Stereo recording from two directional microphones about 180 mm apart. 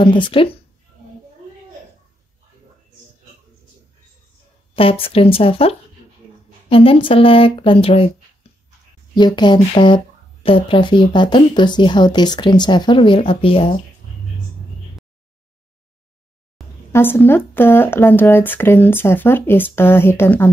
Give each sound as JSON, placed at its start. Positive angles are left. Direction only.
{"t": 0.0, "sound": "speech", "side_deg": 30}
{"t": 5.0, "sound": "speech", "side_deg": 30}
{"t": 9.1, "sound": "speech", "side_deg": 25}
{"t": 16.9, "sound": "speech", "side_deg": 10}